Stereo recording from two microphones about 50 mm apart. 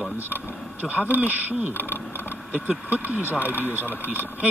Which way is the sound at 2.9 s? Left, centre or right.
Right.